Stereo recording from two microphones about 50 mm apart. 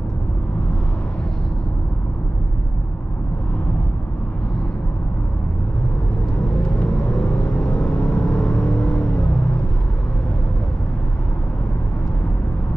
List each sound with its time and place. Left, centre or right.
7.6 s vehicle: left